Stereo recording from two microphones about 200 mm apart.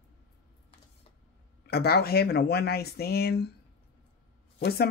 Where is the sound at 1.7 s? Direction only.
50° left (ahead or behind).